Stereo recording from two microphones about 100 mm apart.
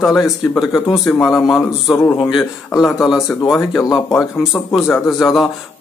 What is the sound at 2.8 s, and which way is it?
Speech, centre (ahead or behind).